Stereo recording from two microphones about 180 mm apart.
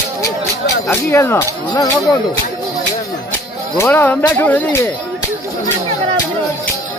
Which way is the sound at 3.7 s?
10° left (ahead or behind).